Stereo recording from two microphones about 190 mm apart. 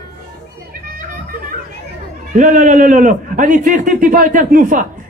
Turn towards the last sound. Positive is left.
turn(degrees=-45)  # may be behind; listen again after turning